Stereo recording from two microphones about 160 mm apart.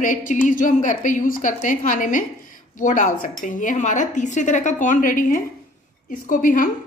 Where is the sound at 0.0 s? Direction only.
55° left (ahead or behind).